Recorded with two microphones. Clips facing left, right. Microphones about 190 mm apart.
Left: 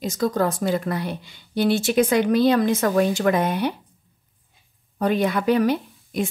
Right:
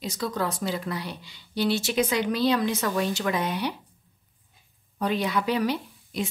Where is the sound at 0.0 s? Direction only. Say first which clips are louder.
Left 7 dB; 45° left (ahead or behind).